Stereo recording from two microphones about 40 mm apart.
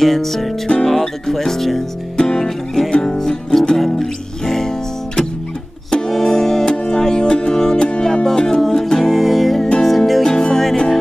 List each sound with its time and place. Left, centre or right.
0.0 s music: centre
0.8 s speech: centre
2.1 s music: centre
6.0 s music: centre
9.0 s music: centre
10.2 s music: centre